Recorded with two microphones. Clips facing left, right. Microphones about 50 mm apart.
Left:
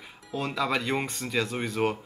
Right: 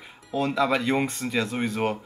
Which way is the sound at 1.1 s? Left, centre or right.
Right.